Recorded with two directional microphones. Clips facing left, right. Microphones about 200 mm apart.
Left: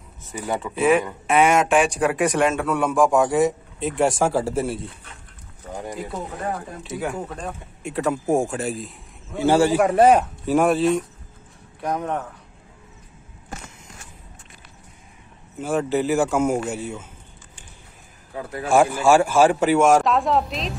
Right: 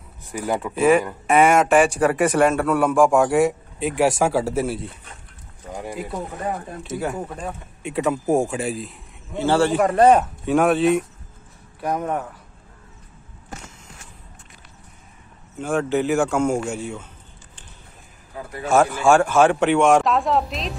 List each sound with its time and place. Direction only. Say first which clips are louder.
0.2 s speech: right 2 dB; 10° right (ahead or behind)
9.4 s speech: left 1 dB; 10° left (ahead or behind); by 12.4 s 5° right (ahead or behind)
15.6 s speech: right 1 dB; 5° left (ahead or behind)
18.7 s speech: even; 10° left (ahead or behind)